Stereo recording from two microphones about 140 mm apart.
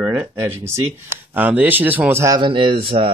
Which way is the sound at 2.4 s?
35° right (ahead or behind).